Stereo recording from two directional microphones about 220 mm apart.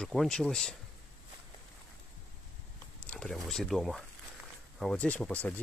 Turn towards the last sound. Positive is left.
turn(degrees=5)  # may be behind; listen again after turning